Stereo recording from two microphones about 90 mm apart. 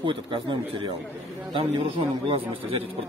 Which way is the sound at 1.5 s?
90° right.